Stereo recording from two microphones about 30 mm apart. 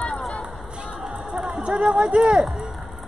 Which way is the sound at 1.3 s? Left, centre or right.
Right.